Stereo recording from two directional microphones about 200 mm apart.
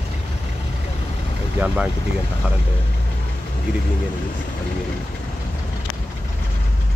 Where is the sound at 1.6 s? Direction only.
5° right (ahead or behind).